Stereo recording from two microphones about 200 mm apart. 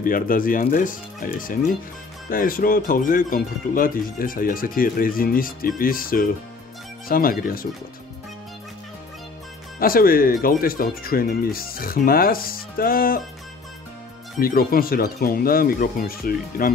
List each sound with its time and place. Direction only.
0.0 s speech: 45° left (ahead or behind)
9.8 s speech: 45° left (ahead or behind)
14.4 s speech: 45° left (ahead or behind)